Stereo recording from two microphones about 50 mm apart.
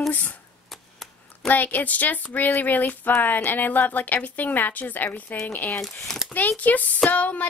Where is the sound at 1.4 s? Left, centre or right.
Left.